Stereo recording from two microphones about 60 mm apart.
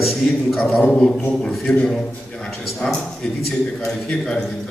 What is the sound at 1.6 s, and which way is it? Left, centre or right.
A man's voice, centre.